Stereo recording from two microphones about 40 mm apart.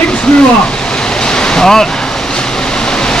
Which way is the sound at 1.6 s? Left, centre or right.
Centre.